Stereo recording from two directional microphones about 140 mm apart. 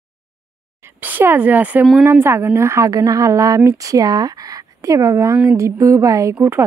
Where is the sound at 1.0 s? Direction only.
15° right (ahead or behind).